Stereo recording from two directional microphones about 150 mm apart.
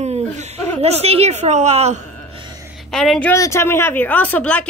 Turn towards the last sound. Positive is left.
turn(degrees=10)  # may be behind; listen again after turning